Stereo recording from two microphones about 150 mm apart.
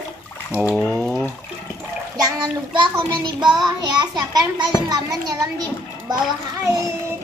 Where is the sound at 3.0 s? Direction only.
30° right (ahead or behind).